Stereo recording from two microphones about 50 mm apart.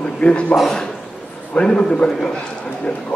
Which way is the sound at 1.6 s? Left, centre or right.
Centre.